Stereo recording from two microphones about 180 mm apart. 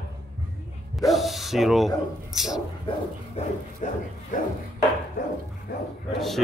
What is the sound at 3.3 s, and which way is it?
Speech, 45° left (ahead or behind).